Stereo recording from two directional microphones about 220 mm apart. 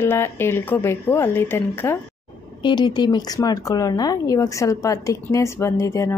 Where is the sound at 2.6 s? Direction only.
20° left (ahead or behind).